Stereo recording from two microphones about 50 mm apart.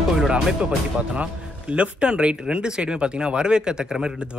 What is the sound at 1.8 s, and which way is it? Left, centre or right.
Speech, right.